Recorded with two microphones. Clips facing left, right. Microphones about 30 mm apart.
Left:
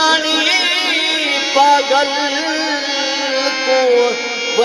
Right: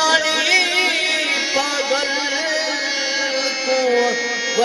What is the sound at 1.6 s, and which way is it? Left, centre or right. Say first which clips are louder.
Music: left 9 dB; centre.